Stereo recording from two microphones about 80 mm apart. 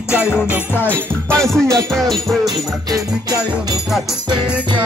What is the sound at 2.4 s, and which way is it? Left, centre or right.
Music, right.